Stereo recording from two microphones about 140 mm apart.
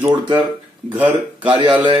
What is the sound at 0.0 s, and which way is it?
Speech, 30° right (ahead or behind).